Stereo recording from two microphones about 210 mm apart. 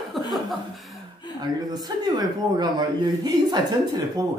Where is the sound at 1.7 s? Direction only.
20° right (ahead or behind).